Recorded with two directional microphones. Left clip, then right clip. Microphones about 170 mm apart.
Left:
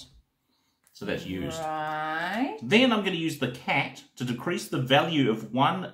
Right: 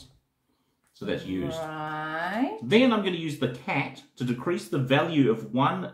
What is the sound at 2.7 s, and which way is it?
Speech, 20° left (ahead or behind).